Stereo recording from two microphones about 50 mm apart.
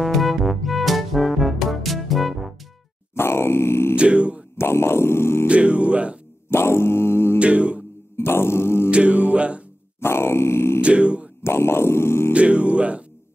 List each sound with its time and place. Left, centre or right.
0.0 s music: centre
3.2 s grunt: left
3.9 s music: right
4.6 s music: left
5.5 s music: right
6.5 s music: left
7.3 s music: right
8.2 s a sound: left
8.9 s music: right
9.9 s grunt: left
10.8 s music: right
11.4 s music: left
12.3 s music: right